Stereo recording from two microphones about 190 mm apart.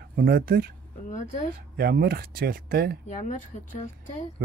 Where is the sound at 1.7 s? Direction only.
55° right (ahead or behind).